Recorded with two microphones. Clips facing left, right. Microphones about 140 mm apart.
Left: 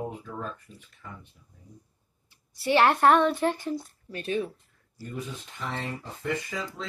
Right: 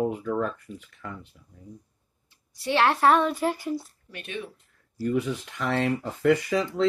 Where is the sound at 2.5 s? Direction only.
Centre (ahead or behind).